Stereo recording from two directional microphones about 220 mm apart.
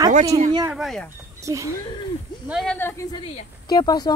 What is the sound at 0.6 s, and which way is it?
Speech, centre (ahead or behind).